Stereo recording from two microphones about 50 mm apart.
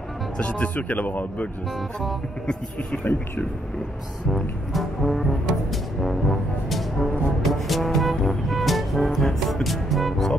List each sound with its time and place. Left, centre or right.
0.4 s speech: left
2.4 s speech: left
4.3 s music: centre